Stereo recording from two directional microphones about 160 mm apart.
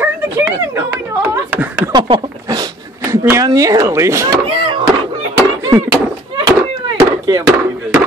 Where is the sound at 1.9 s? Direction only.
30° right (ahead or behind).